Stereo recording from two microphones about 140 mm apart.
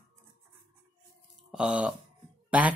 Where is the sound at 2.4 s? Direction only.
10° right (ahead or behind).